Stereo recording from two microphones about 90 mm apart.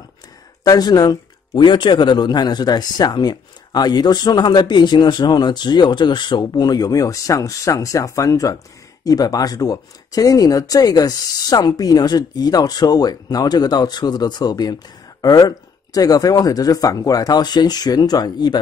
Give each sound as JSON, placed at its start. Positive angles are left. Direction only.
{"t": 0.7, "sound": "speech", "side_deg": 45}